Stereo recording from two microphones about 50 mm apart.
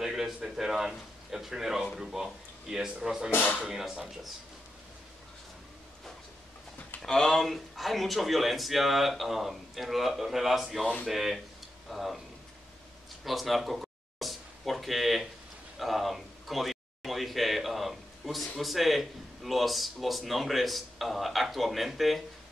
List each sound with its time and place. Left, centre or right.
0.0 s a sound: centre
0.4 s speech: centre
3.3 s speech: left
3.6 s speech: centre
7.0 s speech: centre
13.2 s a sound: centre
15.8 s speech: centre